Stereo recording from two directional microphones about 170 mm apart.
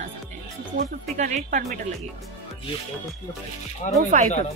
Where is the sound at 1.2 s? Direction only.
45° right (ahead or behind).